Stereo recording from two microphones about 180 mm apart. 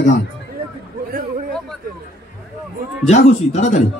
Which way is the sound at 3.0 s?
40° left (ahead or behind).